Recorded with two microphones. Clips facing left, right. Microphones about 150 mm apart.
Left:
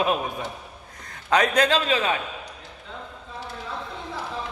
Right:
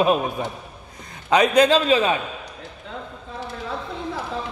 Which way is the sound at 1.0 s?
15° right (ahead or behind).